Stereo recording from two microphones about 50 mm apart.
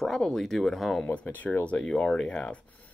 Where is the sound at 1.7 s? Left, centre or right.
Centre.